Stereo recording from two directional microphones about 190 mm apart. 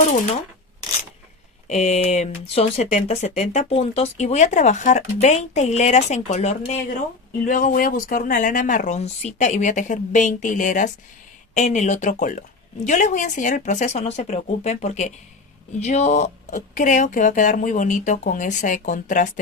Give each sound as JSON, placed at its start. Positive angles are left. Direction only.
{"t": 1.7, "sound": "speech", "side_deg": 35}